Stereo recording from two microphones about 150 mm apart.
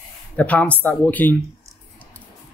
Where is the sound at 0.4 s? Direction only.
10° left (ahead or behind).